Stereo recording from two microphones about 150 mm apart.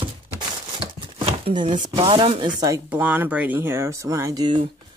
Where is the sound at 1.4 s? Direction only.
30° right (ahead or behind).